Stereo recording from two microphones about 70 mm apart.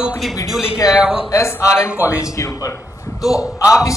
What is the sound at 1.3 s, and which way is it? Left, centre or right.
A man's voice, left.